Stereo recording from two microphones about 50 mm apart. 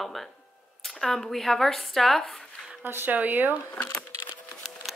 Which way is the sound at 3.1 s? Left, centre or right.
Right.